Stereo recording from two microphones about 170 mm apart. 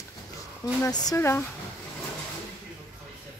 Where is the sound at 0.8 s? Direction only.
20° left (ahead or behind).